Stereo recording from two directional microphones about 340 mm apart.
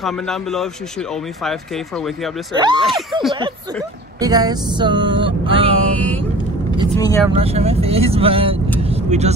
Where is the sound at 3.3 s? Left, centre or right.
Centre.